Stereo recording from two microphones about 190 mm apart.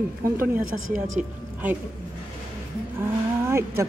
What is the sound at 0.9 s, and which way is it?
Speech, 40° right (ahead or behind).